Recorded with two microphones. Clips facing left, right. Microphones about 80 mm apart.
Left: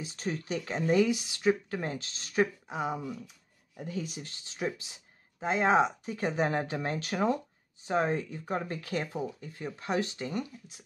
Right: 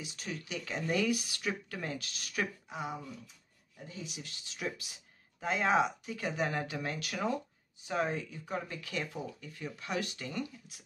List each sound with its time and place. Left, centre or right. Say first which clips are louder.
0.0 s speech: left 7 dB; left
2.7 s speech: left 6 dB; left
4.1 s speech: left 3 dB; left